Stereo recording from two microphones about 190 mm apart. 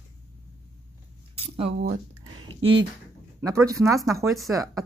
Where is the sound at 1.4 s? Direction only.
30° right (ahead or behind).